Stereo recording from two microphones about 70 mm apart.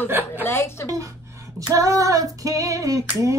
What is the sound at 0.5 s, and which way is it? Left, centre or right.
Speech, left.